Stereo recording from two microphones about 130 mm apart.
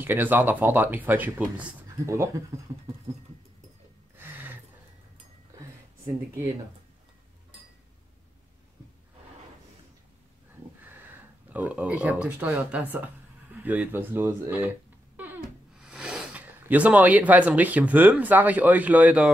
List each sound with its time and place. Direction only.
0.0 s speech: 15° right (ahead or behind)
2.0 s speech: 25° right (ahead or behind)
4.2 s gasp: 15° right (ahead or behind)
11.1 s speech: 10° right (ahead or behind)